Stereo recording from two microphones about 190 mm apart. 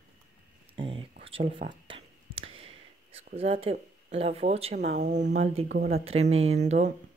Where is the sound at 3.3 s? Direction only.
30° right (ahead or behind).